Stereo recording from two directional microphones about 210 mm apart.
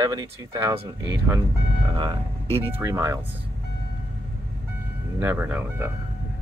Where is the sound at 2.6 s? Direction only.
10° right (ahead or behind).